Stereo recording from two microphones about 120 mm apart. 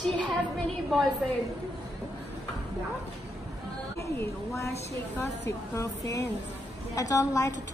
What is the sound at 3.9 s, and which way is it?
A woman's voice, 20° left (ahead or behind).